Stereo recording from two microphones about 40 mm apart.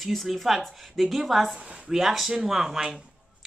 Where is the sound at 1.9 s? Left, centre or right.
Centre.